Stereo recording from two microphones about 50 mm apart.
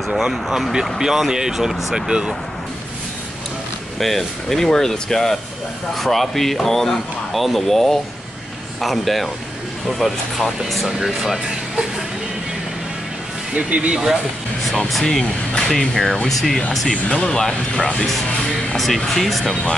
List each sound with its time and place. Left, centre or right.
0.1 s speech: centre
2.0 s speech: centre
4.0 s speech: centre
13.6 s speech: right
15.0 s speech: centre
16.9 s speech: centre